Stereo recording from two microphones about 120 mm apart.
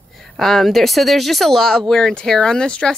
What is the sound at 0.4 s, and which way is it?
Speech, centre (ahead or behind).